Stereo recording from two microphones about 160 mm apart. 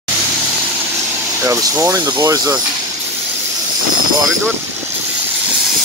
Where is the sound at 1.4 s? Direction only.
20° right (ahead or behind).